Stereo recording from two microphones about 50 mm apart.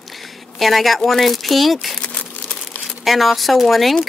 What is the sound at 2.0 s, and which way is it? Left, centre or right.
Crumpling, left.